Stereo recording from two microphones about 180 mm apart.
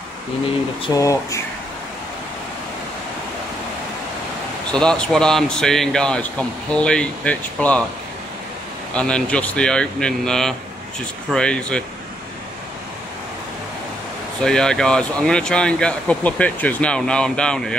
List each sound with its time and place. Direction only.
0.8 s speech: 20° left (ahead or behind)
4.6 s speech: 5° left (ahead or behind)
8.9 s speech: 5° left (ahead or behind)
14.4 s speech: 5° left (ahead or behind)